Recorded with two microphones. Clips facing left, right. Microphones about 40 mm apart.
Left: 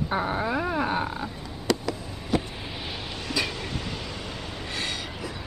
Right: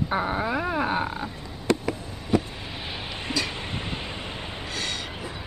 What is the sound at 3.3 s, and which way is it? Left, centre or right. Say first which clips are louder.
Vehicle: even; right.